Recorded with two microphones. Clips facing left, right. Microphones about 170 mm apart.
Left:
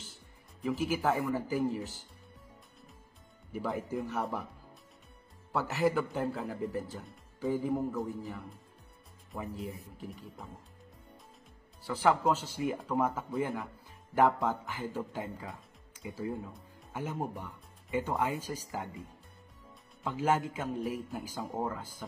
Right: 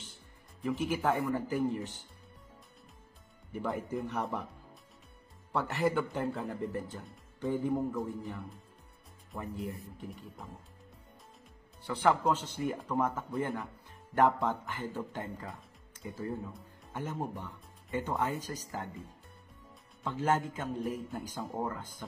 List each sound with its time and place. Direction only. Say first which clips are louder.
0.0 s speech: even; centre (ahead or behind)
3.5 s a man's voice: even; centre (ahead or behind)
5.5 s a man's voice: left 1 dB; centre (ahead or behind)
11.8 s a man's voice: left 1 dB; centre (ahead or behind)
20.0 s speech: left 1 dB; 10° left (ahead or behind)